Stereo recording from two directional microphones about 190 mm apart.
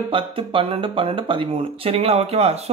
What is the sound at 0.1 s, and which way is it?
Speech, 25° right (ahead or behind).